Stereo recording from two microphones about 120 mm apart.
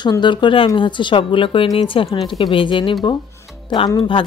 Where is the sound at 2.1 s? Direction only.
40° left (ahead or behind).